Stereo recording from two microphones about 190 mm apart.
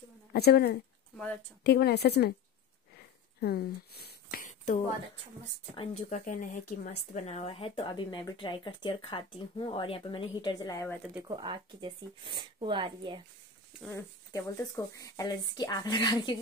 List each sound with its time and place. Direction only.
0.3 s a woman's voice: 55° left (ahead or behind)
1.1 s speech: 5° left (ahead or behind)
1.6 s a woman's voice: 55° left (ahead or behind)
3.3 s speech: 55° left (ahead or behind); by 11.0 s 15° left (ahead or behind)
11.2 s speech: 25° right (ahead or behind)
13.8 s speech: 15° left (ahead or behind)